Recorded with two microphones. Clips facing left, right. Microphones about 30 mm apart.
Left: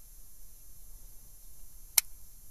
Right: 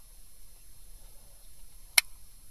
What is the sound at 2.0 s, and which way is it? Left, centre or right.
Tick, right.